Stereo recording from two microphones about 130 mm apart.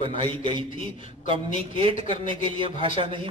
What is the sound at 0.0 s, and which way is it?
A man's voice, 40° right (ahead or behind).